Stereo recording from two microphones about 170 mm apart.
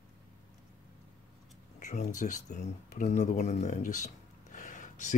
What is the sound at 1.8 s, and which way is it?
Speech, 45° left (ahead or behind).